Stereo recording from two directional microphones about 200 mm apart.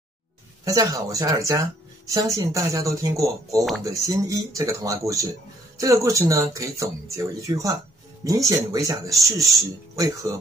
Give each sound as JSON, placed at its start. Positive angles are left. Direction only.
{"t": 0.7, "sound": "speech", "side_deg": -15}